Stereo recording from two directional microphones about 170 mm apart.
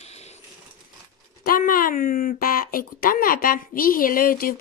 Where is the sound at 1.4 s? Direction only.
55° left (ahead or behind).